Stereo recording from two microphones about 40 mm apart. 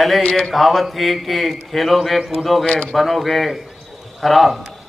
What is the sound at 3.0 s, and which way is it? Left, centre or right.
A man's voice, centre.